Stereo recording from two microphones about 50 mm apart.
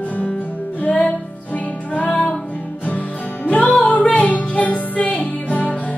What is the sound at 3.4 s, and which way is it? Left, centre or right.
Music, left.